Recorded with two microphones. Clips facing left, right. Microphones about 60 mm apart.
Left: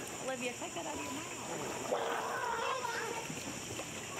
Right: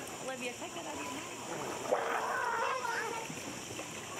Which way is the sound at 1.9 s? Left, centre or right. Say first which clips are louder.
Right 3 dB; right.